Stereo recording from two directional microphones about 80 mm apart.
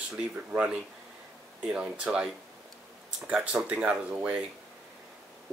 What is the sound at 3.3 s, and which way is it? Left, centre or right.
Speech, centre.